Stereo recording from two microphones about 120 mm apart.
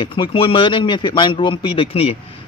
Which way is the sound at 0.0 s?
45° left (ahead or behind).